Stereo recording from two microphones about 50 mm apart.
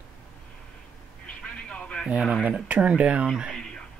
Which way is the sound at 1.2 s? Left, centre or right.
Left.